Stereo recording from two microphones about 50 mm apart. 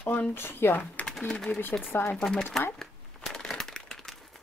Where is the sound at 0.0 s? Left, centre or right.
Left.